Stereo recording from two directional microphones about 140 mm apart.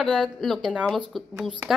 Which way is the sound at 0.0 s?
Centre (ahead or behind).